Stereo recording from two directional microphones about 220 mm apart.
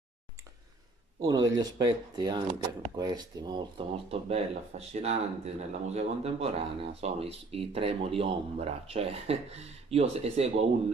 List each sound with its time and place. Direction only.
1.2 s speech: 15° right (ahead or behind)